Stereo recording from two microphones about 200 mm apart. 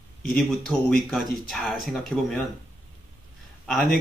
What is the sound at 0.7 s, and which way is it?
Speech, centre (ahead or behind).